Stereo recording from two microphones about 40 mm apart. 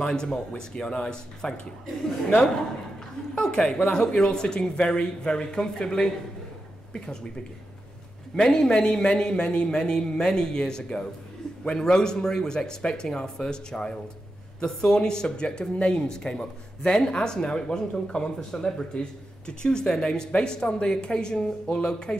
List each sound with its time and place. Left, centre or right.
0.1 s speech: centre
3.3 s speech: left
8.4 s speech: centre